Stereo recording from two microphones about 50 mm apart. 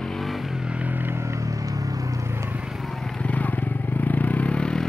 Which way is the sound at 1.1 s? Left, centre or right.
Right.